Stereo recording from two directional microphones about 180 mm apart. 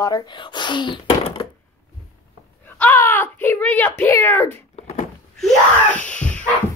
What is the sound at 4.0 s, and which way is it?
Speech, 15° left (ahead or behind).